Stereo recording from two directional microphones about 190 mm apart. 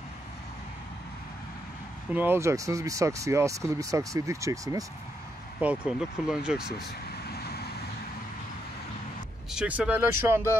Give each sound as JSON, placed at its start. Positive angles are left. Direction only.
{"t": 2.1, "sound": "speech", "side_deg": -10}
{"t": 5.6, "sound": "speech", "side_deg": -5}
{"t": 7.3, "sound": "vehicle", "side_deg": 55}
{"t": 9.5, "sound": "speech", "side_deg": -5}